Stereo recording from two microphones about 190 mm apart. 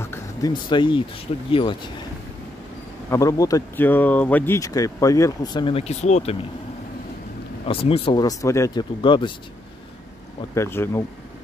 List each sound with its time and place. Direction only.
0.0 s music: 15° left (ahead or behind)
0.5 s speech: 25° left (ahead or behind)
3.1 s speech: 15° left (ahead or behind); by 6.3 s 35° left (ahead or behind)
7.6 s speech: 30° left (ahead or behind)
10.5 s speech: 15° left (ahead or behind)